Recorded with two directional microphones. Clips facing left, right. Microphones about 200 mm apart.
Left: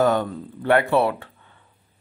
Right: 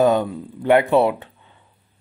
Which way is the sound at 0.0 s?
15° right (ahead or behind).